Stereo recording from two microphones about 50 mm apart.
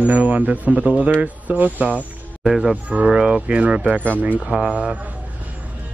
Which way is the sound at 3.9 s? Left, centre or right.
Right.